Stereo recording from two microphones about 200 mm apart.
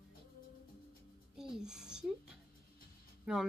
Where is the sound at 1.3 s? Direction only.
5° right (ahead or behind).